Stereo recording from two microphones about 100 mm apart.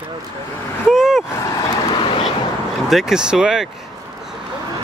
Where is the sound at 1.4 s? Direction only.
40° left (ahead or behind).